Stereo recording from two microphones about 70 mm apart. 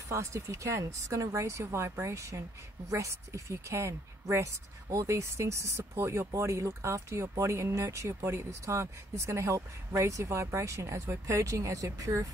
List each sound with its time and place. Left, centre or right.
0.1 s speech: right